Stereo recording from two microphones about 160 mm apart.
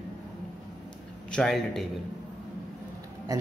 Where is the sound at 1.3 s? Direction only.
5° left (ahead or behind).